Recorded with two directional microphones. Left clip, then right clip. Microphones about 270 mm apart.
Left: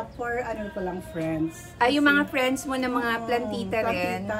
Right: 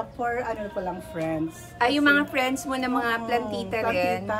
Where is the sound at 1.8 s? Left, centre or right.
Centre.